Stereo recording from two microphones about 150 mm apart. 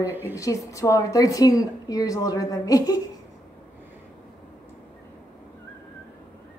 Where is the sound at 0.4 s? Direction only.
20° left (ahead or behind).